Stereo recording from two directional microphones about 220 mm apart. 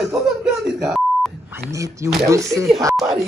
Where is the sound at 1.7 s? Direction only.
15° right (ahead or behind).